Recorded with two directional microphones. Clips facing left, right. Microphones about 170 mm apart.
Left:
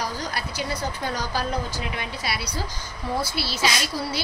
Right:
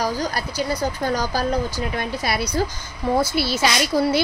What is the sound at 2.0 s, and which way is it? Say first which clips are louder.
A woman's voice: right 7 dB; 50° right (ahead or behind).